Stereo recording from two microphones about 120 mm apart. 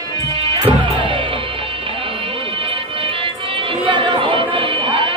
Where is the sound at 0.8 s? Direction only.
45° right (ahead or behind).